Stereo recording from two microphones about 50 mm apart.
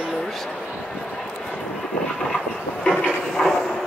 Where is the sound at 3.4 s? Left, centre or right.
Centre.